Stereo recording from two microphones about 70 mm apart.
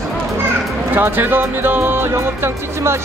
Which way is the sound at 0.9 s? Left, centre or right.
Right.